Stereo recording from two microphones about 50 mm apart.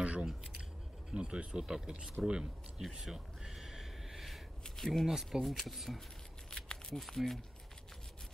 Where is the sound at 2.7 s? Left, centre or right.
Centre.